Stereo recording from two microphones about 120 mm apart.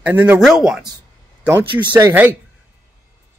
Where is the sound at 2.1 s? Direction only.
15° right (ahead or behind).